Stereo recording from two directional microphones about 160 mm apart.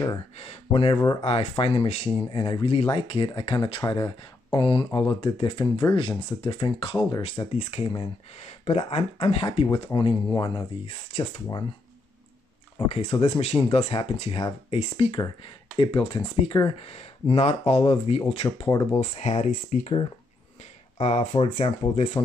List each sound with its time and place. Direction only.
0.4 s speech: 35° left (ahead or behind)
7.2 s speech: 40° left (ahead or behind)
10.3 s speech: 25° left (ahead or behind)
10.9 s speech: 40° left (ahead or behind)
12.8 s speech: 40° left (ahead or behind)
18.7 s speech: 20° left (ahead or behind)
18.9 s speech: 45° left (ahead or behind)
21.0 s speech: 40° left (ahead or behind)